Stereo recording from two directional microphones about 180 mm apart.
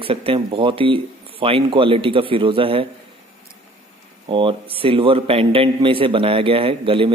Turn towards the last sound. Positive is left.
turn(degrees=-30)  # may be behind; listen again after turning